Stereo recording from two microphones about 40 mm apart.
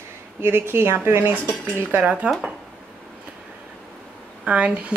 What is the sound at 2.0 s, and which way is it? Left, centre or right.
Speech, right.